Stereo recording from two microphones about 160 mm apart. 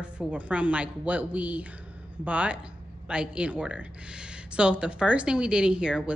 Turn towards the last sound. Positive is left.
turn(degrees=-5)  # may be behind; listen again after turning